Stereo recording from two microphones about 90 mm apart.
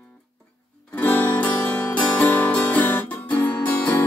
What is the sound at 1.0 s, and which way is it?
Music, 20° left (ahead or behind).